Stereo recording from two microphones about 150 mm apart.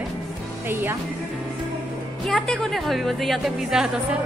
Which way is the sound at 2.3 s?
5° left (ahead or behind).